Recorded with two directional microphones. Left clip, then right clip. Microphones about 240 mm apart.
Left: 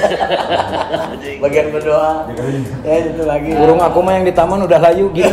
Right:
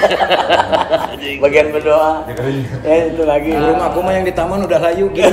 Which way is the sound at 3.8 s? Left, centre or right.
Centre.